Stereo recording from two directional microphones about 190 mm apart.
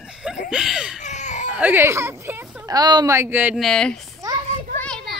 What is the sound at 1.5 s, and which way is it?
Speech, 10° right (ahead or behind).